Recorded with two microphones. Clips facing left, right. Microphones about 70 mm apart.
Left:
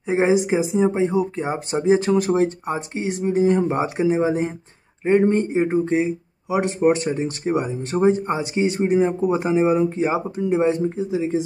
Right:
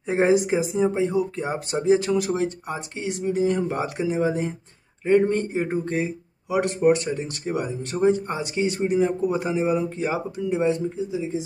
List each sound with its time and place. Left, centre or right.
0.0 s speech: centre; by 4.5 s left
5.3 s speech: centre
11.1 s speech: left